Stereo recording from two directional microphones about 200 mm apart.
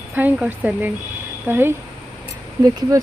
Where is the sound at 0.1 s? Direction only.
5° right (ahead or behind).